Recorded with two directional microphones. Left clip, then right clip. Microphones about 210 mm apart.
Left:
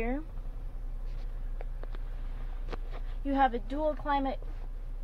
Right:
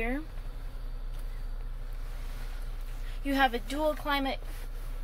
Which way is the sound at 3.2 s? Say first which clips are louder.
Even; 15° left (ahead or behind).